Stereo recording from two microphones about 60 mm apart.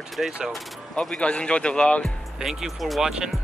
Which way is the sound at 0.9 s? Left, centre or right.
Centre.